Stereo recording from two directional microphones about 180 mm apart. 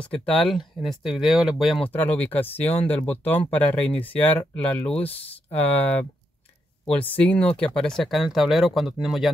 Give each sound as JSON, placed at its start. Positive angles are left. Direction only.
{"t": 0.1, "sound": "speech", "side_deg": 5}